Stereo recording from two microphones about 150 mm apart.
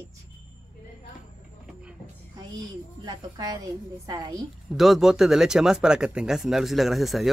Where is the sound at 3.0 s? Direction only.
25° right (ahead or behind).